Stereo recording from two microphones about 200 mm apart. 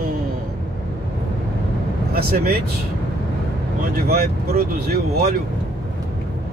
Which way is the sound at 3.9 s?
50° right (ahead or behind).